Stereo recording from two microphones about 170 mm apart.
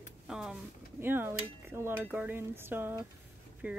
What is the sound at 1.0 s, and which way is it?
Dishes, 10° right (ahead or behind).